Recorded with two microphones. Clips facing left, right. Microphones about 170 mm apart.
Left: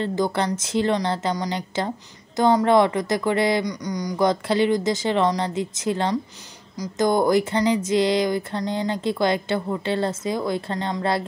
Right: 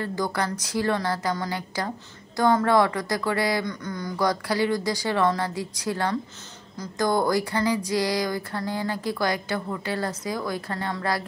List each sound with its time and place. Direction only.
0.0 s speech: 25° left (ahead or behind)